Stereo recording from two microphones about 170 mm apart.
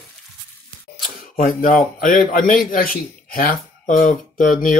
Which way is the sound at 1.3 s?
55° left (ahead or behind).